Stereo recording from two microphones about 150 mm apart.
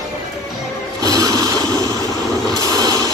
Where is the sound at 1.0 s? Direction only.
25° right (ahead or behind).